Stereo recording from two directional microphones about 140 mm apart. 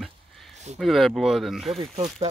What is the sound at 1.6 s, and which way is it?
Speech, 45° right (ahead or behind).